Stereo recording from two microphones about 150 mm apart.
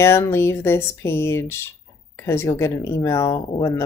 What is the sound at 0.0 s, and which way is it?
Speech, 15° left (ahead or behind).